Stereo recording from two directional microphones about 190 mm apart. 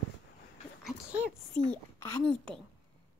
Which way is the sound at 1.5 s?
5° left (ahead or behind).